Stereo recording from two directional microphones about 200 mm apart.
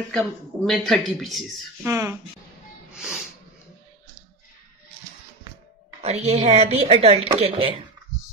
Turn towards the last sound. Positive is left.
turn(degrees=-30)  # may be behind; listen again after turning